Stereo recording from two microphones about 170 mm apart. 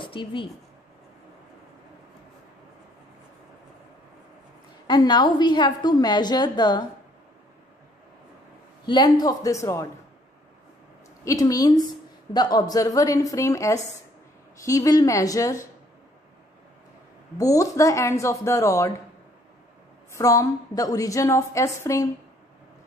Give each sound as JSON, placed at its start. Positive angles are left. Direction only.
{"t": 0.0, "sound": "speech", "side_deg": 30}
{"t": 4.8, "sound": "a woman's voice", "side_deg": 25}
{"t": 8.8, "sound": "a woman's voice", "side_deg": 25}
{"t": 11.2, "sound": "a woman's voice", "side_deg": 20}
{"t": 17.4, "sound": "speech", "side_deg": 20}
{"t": 20.1, "sound": "a woman's voice", "side_deg": 20}